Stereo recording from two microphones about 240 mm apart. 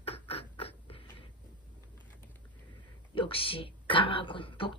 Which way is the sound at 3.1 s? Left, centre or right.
Left.